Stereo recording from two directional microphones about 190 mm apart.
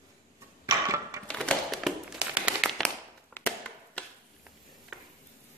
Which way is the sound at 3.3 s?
10° left (ahead or behind).